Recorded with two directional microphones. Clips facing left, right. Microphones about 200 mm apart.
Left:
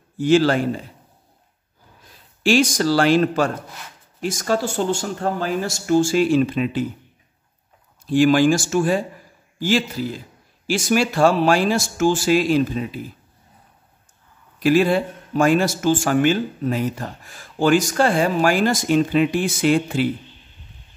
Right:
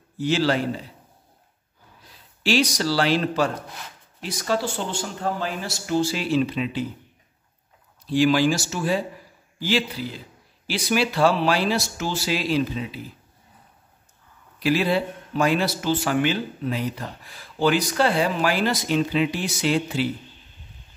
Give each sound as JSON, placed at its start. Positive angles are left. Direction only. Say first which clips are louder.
{"t": 0.2, "sound": "a man's voice", "louder": "left 6 dB", "side_deg": 50}
{"t": 2.4, "sound": "a man's voice", "louder": "left 5 dB", "side_deg": 50}
{"t": 8.1, "sound": "a man's voice", "louder": "left 4 dB", "side_deg": 50}
{"t": 14.6, "sound": "a man's voice", "louder": "left 5 dB", "side_deg": 50}